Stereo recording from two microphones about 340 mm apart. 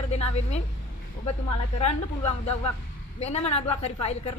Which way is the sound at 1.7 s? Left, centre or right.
Centre.